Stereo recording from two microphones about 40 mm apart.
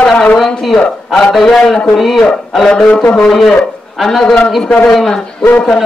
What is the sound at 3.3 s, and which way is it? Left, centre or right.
A man's voice, centre.